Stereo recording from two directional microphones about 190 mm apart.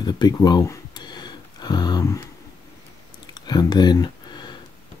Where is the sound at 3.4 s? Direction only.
20° left (ahead or behind).